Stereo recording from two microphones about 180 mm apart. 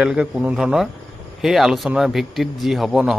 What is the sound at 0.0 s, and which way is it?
Speech, 5° right (ahead or behind).